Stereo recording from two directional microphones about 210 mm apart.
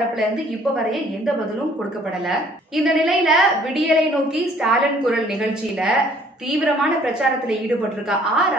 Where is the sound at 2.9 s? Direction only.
5° right (ahead or behind).